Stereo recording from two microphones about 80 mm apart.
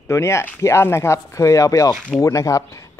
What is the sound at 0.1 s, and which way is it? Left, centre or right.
Speech, left.